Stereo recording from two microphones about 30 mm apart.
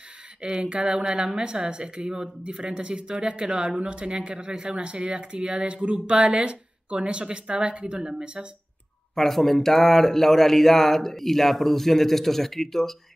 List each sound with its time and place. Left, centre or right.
0.4 s a woman's voice: right
9.1 s speech: centre